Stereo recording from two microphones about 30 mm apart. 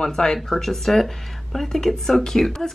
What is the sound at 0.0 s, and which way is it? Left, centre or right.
Speech, left.